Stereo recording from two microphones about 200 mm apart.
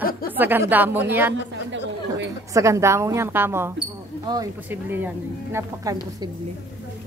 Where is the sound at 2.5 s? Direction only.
15° right (ahead or behind).